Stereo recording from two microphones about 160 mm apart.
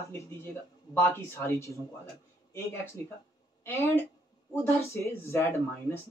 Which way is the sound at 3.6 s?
15° left (ahead or behind).